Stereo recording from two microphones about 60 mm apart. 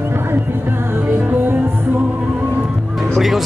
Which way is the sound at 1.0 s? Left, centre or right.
Right.